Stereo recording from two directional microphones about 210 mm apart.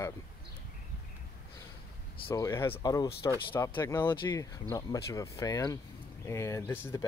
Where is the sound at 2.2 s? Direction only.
15° left (ahead or behind).